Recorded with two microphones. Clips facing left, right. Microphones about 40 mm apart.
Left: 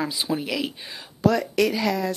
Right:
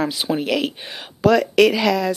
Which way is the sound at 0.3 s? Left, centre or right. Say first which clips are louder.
Right 5 dB; right.